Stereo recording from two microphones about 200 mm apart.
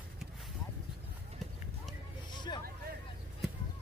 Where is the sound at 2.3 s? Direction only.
20° left (ahead or behind).